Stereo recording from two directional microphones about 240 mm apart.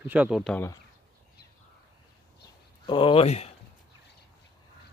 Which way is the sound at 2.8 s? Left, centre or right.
Left.